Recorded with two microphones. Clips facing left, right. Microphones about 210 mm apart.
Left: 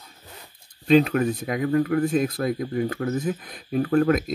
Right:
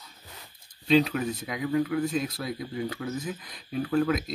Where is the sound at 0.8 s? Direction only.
55° left (ahead or behind).